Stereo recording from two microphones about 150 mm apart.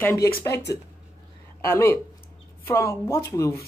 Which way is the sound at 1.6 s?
15° left (ahead or behind).